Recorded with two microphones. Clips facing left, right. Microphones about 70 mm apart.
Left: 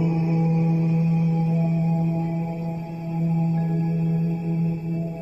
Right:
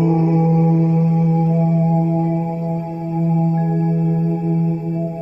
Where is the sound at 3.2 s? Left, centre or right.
Right.